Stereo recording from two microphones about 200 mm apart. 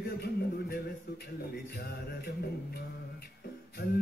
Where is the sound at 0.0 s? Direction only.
50° left (ahead or behind).